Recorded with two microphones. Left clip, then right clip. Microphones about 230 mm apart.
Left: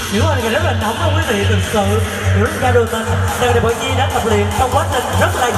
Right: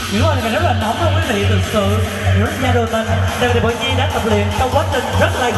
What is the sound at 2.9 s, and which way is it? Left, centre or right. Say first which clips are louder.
Music: even; left.